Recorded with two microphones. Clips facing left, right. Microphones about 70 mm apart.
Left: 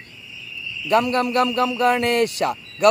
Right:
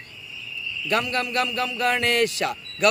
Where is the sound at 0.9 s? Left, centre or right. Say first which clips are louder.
Left 6 dB; left.